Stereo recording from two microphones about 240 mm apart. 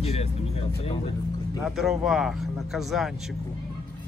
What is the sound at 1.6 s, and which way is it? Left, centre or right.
Speech, centre.